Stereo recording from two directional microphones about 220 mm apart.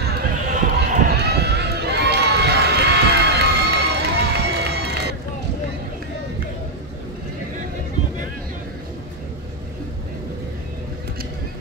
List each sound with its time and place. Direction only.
0.0 s run: 45° right (ahead or behind)